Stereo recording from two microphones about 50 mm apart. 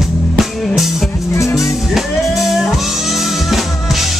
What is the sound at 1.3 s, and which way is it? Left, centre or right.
Music, left.